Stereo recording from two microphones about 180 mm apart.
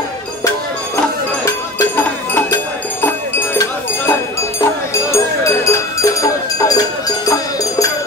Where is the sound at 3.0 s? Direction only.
10° left (ahead or behind).